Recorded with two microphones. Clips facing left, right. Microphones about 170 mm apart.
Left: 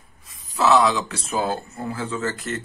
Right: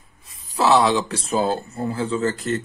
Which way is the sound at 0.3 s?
30° right (ahead or behind).